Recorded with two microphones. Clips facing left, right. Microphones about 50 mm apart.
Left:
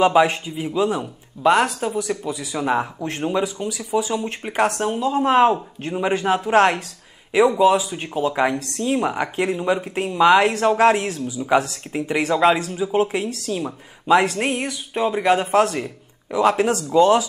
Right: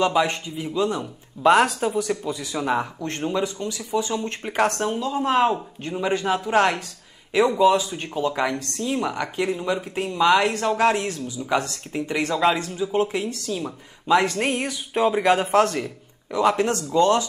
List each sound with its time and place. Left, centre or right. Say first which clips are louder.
0.0 s a man's voice: left 5 dB; centre
1.4 s a man's voice: even; centre
5.0 s speech: left 5 dB; left
7.3 s a man's voice: left 2 dB; centre